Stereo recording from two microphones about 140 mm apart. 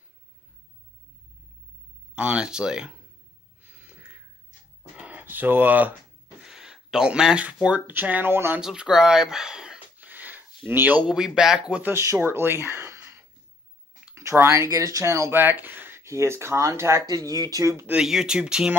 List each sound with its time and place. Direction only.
2.1 s speech: 5° right (ahead or behind)
3.6 s a sound: 15° right (ahead or behind)
6.4 s speech: 5° right (ahead or behind)
8.5 s a sound: 5° right (ahead or behind)
10.7 s speech: 15° right (ahead or behind)
11.9 s speech: 20° right (ahead or behind)
17.9 s speech: 5° right (ahead or behind)